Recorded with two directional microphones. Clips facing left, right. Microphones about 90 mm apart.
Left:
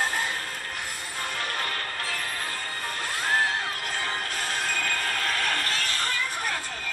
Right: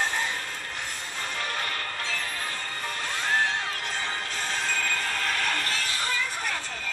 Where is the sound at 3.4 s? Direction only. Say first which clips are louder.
Left 1 dB; 45° left (ahead or behind).